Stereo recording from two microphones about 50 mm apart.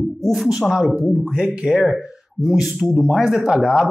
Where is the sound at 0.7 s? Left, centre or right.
Centre.